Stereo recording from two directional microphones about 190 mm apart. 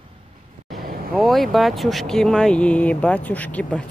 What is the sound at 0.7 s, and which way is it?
Vehicle, 50° right (ahead or behind).